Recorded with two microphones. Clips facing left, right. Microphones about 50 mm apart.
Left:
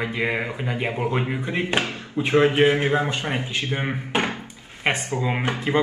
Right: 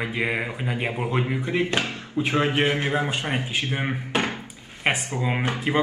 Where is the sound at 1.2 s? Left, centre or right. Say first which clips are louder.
Right 1 dB; centre.